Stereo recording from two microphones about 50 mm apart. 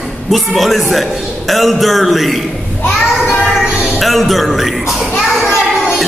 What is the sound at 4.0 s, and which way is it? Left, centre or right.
A child's voice, centre.